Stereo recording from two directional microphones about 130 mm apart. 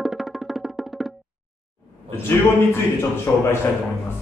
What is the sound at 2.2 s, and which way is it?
A man's voice, 20° left (ahead or behind).